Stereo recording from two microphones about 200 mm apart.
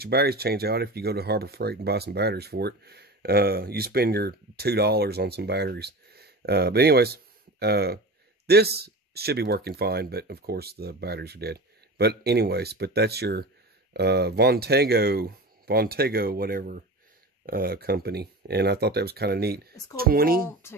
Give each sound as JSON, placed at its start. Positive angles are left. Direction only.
{"t": 0.0, "sound": "speech", "side_deg": -50}